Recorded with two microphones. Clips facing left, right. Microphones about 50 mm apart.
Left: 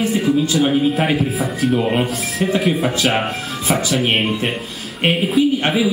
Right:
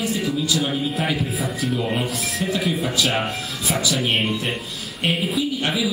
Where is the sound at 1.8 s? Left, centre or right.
Centre.